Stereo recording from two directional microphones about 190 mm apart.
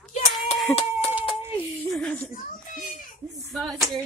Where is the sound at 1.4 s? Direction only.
10° left (ahead or behind).